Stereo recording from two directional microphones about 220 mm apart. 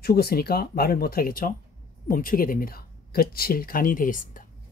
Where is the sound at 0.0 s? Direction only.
45° left (ahead or behind).